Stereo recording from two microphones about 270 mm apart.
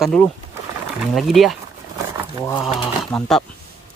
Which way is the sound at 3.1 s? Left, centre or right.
Centre.